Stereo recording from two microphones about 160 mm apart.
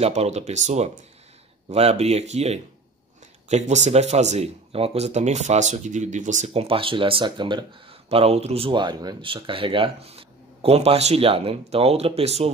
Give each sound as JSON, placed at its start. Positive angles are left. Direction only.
{"t": 0.0, "sound": "speech", "side_deg": -40}
{"t": 8.1, "sound": "speech", "side_deg": -40}